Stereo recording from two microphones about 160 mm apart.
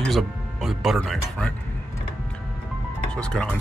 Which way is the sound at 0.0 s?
Centre (ahead or behind).